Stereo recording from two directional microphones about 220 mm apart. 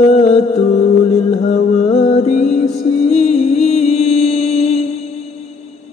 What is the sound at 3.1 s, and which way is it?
Music, 30° left (ahead or behind).